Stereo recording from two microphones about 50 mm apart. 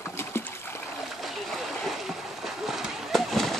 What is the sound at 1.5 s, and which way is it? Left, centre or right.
Splash, centre.